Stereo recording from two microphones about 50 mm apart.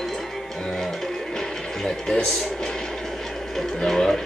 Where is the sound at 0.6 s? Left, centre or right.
Centre.